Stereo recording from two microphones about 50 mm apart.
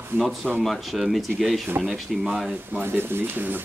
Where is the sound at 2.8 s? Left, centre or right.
Right.